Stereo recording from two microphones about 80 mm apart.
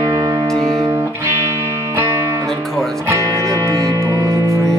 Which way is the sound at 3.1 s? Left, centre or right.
Right.